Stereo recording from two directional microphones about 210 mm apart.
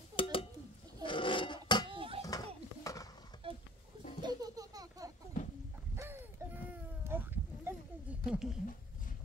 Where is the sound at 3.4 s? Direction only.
25° right (ahead or behind).